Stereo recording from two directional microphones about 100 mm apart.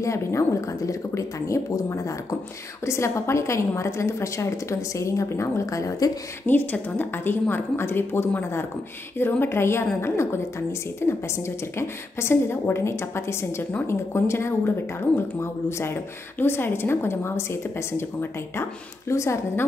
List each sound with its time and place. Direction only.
0.0 s a woman's voice: 30° left (ahead or behind)
6.4 s a woman's voice: 20° left (ahead or behind)